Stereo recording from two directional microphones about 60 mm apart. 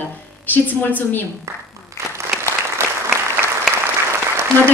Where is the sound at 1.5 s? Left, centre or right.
Right.